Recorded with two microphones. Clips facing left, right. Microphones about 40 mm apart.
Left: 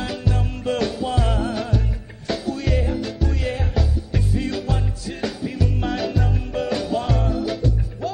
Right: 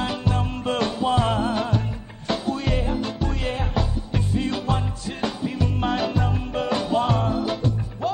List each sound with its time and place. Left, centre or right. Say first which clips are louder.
0.0 s music: right 1 dB; centre